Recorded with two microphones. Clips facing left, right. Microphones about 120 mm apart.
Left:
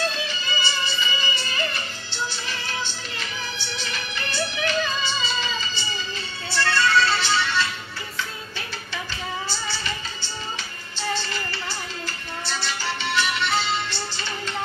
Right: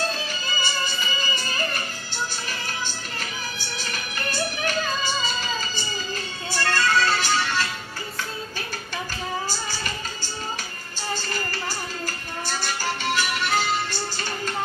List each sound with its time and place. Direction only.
0.1 s music: 45° right (ahead or behind)
9.5 s music: 45° right (ahead or behind)